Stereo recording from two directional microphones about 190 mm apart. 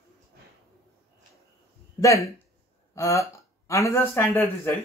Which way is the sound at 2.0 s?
15° left (ahead or behind).